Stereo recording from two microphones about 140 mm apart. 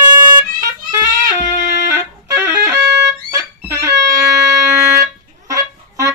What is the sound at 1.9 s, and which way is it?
Music, 20° right (ahead or behind).